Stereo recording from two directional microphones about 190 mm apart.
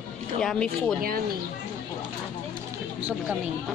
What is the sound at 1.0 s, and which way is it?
Speech, 50° right (ahead or behind).